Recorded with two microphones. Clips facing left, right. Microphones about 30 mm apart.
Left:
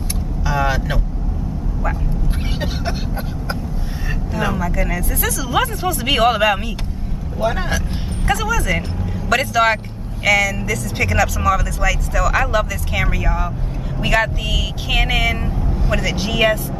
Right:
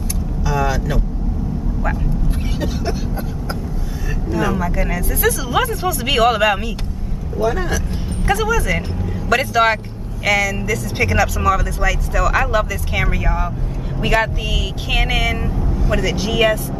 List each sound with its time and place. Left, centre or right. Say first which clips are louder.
0.5 s vehicle: even; left
2.6 s speech: right 2 dB; left
4.6 s speech: even; centre
7.3 s speech: right 1 dB; left
8.3 s speech: right 1 dB; centre